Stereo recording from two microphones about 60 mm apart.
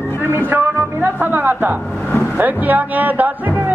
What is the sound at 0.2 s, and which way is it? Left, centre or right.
Speech, right.